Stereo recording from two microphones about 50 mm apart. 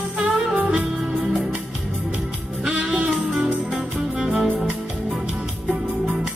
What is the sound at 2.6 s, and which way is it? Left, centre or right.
Music, centre.